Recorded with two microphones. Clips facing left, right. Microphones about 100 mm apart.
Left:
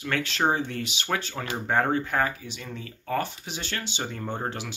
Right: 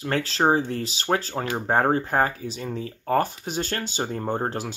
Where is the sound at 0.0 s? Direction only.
35° right (ahead or behind).